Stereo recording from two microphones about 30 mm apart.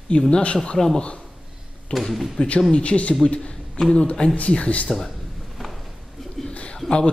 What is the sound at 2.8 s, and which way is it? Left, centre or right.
Speech, left.